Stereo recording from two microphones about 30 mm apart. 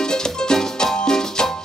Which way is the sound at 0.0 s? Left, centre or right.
Left.